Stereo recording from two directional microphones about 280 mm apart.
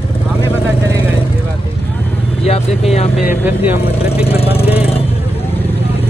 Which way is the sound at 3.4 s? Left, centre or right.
Centre.